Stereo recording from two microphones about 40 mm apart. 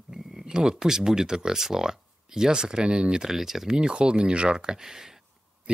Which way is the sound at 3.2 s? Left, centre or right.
Centre.